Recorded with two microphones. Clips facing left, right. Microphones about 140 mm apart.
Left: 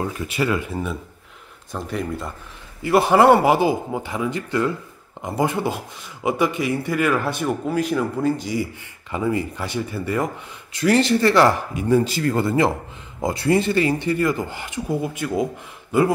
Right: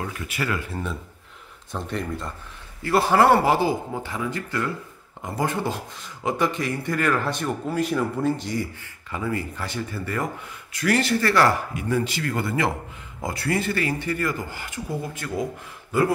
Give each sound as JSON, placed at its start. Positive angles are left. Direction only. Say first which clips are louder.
{"t": 0.0, "sound": "speech", "louder": "left 6 dB", "side_deg": 25}
{"t": 1.7, "sound": "a man's voice", "louder": "left 2 dB", "side_deg": 5}
{"t": 9.1, "sound": "speech", "louder": "left 5 dB", "side_deg": 20}